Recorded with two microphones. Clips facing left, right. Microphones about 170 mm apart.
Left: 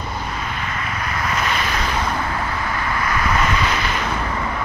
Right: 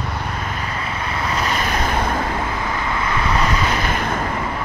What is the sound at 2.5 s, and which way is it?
Vehicle, 20° right (ahead or behind).